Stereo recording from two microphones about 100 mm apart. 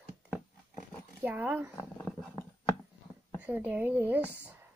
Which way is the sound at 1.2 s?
15° right (ahead or behind).